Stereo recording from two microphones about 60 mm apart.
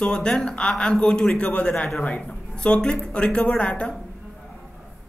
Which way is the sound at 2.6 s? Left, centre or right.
Centre.